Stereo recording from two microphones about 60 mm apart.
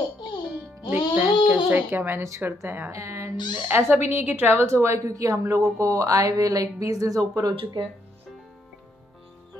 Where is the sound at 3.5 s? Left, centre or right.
Right.